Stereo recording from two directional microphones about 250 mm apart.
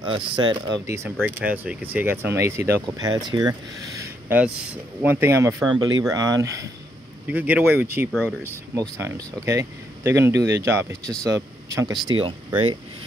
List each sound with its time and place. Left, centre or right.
0.0 s speech: centre
8.7 s speech: centre